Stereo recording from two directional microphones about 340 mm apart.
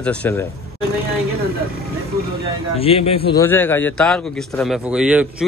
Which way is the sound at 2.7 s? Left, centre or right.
Centre.